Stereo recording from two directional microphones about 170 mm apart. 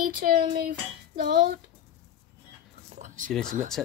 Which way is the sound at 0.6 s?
55° right (ahead or behind).